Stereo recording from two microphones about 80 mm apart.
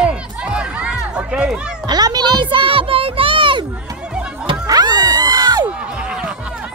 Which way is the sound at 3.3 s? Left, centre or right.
Right.